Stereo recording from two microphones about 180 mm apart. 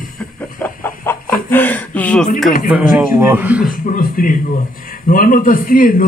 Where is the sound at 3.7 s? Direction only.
50° left (ahead or behind).